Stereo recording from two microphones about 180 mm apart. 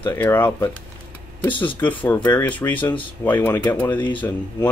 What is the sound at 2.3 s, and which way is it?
Speech, 10° left (ahead or behind).